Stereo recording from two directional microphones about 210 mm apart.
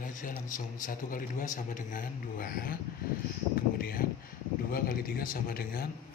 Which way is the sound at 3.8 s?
45° left (ahead or behind).